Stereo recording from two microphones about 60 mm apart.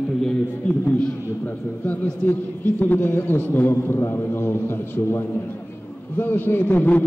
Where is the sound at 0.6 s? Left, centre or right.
Left.